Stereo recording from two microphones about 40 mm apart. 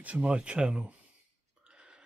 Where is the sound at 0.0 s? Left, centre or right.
Right.